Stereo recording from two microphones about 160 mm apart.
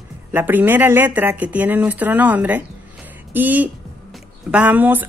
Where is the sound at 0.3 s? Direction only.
10° right (ahead or behind).